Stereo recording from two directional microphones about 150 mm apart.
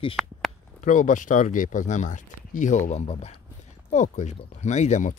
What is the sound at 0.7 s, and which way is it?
Speech, 60° left (ahead or behind).